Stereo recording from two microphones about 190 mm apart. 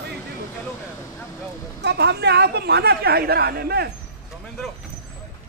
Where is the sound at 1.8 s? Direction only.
60° right (ahead or behind).